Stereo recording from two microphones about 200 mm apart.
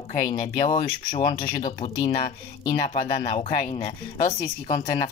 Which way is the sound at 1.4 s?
45° left (ahead or behind).